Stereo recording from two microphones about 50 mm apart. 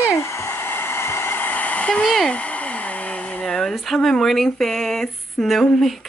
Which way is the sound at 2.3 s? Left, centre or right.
Left.